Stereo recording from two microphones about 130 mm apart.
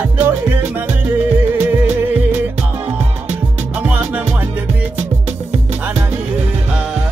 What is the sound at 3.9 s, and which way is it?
Music, 10° right (ahead or behind).